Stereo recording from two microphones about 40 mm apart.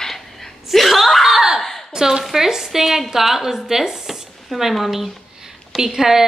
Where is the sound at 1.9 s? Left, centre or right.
Centre.